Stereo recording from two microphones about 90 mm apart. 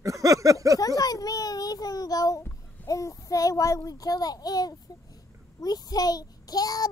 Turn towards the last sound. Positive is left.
turn(degrees=45)  # may be behind; listen again after turning